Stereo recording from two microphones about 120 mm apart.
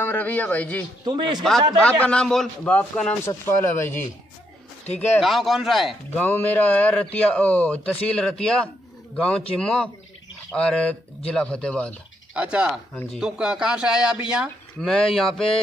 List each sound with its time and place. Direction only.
0.0 s a man's voice: 15° left (ahead or behind)
1.1 s a man's voice: 40° right (ahead or behind)
1.8 s a man's voice: 10° left (ahead or behind)
3.3 s a man's voice: 20° left (ahead or behind)
5.2 s speech: centre (ahead or behind)
6.1 s a man's voice: 15° left (ahead or behind)
12.4 s speech: 10° right (ahead or behind)
14.8 s speech: 5° left (ahead or behind)